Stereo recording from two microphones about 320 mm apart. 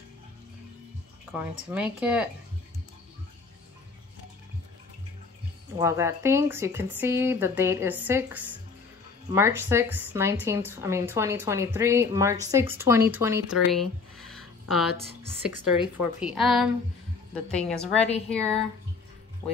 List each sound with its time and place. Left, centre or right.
1.3 s speech: centre
5.8 s speech: centre
15.0 s speech: centre
15.5 s speech: centre
17.7 s a woman's voice: centre
18.3 s speech: centre